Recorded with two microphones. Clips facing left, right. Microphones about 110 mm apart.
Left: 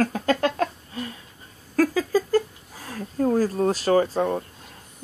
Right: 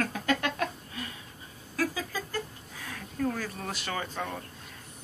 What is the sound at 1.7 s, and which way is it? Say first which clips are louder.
A woman's voice: left 11 dB; 45° left (ahead or behind).